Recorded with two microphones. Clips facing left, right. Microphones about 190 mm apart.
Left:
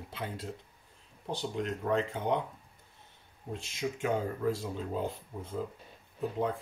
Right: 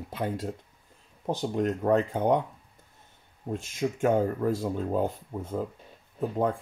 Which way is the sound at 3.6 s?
45° right (ahead or behind).